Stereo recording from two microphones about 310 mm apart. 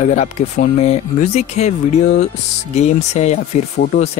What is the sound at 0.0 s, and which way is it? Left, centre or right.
Speech, left.